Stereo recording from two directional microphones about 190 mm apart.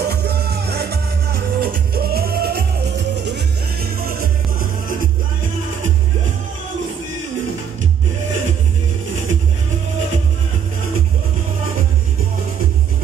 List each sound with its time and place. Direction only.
0.0 s music: 55° right (ahead or behind)
3.8 s music: 50° right (ahead or behind)